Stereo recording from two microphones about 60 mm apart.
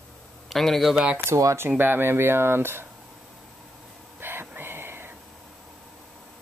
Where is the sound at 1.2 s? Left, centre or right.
Right.